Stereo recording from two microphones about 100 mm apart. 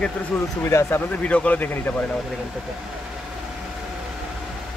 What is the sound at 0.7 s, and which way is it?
Speech, 25° left (ahead or behind).